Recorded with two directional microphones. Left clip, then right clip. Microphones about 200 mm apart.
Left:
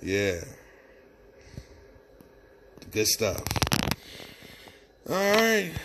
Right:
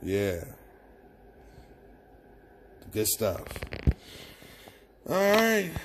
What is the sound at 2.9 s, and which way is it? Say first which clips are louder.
Speech: left 3 dB; 5° left (ahead or behind).